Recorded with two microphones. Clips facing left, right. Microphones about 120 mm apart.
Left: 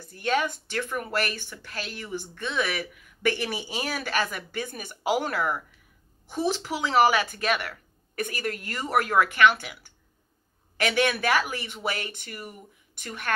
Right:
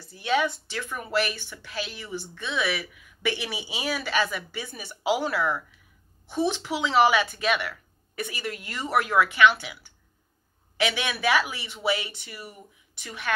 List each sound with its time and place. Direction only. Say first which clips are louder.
0.0 s speech: right 1 dB; 50° left (ahead or behind)
6.7 s a woman's voice: even; 40° left (ahead or behind)